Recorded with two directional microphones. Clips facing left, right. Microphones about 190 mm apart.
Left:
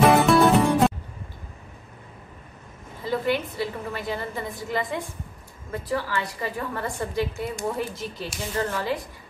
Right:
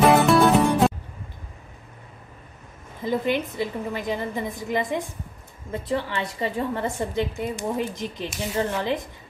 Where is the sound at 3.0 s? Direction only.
20° right (ahead or behind).